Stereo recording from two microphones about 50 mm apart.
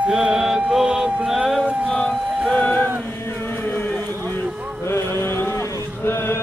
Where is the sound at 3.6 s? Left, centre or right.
Left.